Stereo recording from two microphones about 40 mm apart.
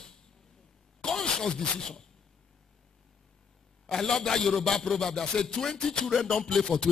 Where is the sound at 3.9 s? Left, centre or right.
Centre.